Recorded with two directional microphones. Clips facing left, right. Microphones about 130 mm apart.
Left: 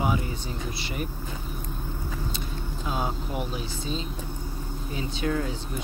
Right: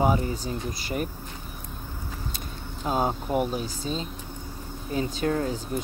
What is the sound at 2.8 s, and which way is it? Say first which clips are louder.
Speech: right 5 dB; 40° right (ahead or behind).